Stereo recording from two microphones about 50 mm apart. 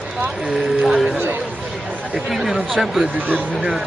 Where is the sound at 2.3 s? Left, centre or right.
Centre.